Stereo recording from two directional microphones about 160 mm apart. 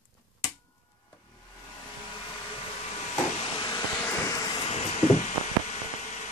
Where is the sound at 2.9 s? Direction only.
35° left (ahead or behind).